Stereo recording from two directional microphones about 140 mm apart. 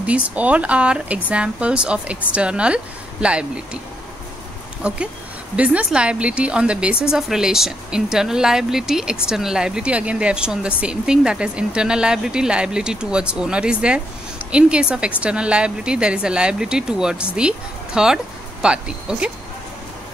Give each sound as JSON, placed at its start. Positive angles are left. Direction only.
{"t": 0.0, "sound": "a woman's voice", "side_deg": -10}
{"t": 4.8, "sound": "a woman's voice", "side_deg": -10}